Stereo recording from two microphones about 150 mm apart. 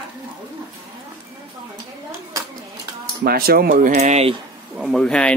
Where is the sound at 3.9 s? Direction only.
45° right (ahead or behind).